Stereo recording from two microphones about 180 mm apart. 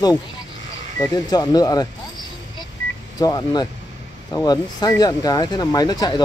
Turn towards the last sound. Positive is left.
turn(degrees=20)  # may be behind; listen again after turning